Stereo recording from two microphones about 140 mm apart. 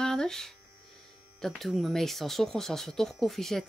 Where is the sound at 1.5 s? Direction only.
Centre (ahead or behind).